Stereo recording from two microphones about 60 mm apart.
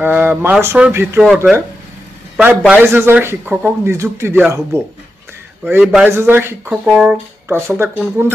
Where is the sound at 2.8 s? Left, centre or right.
Right.